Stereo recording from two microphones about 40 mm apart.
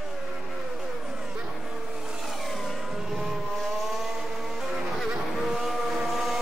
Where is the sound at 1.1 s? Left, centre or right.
Right.